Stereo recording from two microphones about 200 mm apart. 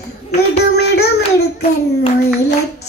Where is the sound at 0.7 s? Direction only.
55° left (ahead or behind).